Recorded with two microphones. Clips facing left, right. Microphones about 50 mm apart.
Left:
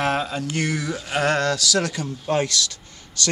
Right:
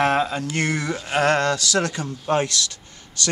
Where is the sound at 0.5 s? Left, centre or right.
Right.